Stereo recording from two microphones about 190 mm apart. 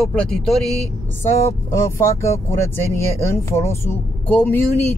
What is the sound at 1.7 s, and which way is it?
Speech, 15° left (ahead or behind).